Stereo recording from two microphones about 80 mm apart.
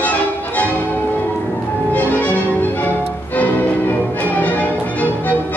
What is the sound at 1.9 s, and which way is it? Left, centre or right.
Music, left.